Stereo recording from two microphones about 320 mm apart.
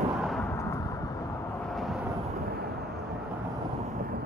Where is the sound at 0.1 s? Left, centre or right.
Centre.